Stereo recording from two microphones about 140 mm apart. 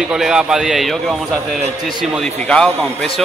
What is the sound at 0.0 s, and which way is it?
A man's voice, 5° right (ahead or behind).